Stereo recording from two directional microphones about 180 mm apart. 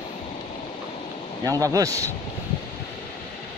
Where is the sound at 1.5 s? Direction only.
20° right (ahead or behind).